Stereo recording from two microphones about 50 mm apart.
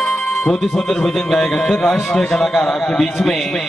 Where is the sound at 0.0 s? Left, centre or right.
Centre.